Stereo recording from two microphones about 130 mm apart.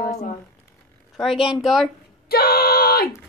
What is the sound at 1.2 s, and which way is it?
Speech, centre (ahead or behind).